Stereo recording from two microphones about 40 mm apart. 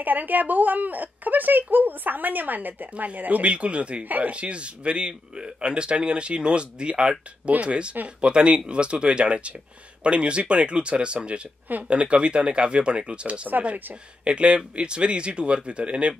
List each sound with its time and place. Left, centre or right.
0.0 s speech: right
3.5 s speech: right
4.0 s speech: right
4.3 s speech: right